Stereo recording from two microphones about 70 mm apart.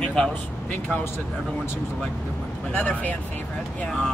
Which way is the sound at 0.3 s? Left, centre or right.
Left.